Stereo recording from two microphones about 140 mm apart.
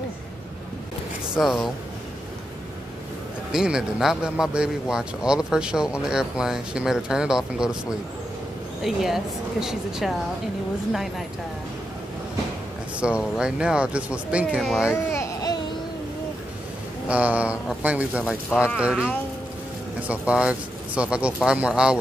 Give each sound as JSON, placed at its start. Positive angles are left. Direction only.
{"t": 1.3, "sound": "speech", "side_deg": 0}
{"t": 3.5, "sound": "speech", "side_deg": -5}
{"t": 13.0, "sound": "speech", "side_deg": -5}
{"t": 15.0, "sound": "babbling", "side_deg": 20}
{"t": 17.1, "sound": "speech", "side_deg": -10}